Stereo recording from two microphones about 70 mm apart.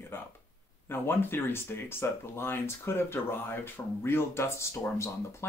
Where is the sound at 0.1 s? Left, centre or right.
Left.